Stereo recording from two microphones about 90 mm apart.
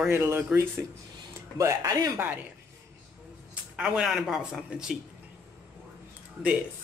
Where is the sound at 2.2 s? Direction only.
20° right (ahead or behind).